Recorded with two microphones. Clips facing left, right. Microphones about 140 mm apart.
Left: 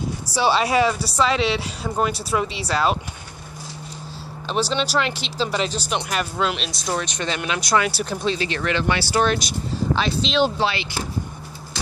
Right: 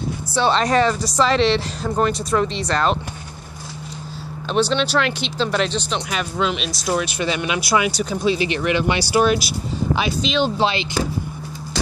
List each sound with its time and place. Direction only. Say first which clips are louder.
0.3 s speech: right 2 dB; 10° left (ahead or behind)
4.5 s speech: right 4 dB; 5° left (ahead or behind)
8.3 s speech: right 4 dB; 15° right (ahead or behind)
10.6 s speech: right 3 dB; 20° right (ahead or behind)